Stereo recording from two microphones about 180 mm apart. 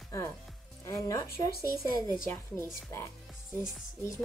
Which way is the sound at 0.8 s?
20° left (ahead or behind).